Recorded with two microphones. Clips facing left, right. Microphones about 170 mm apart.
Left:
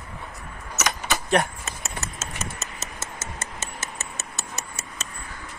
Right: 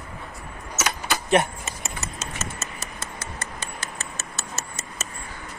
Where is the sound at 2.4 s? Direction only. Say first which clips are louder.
Right 1 dB; 20° left (ahead or behind).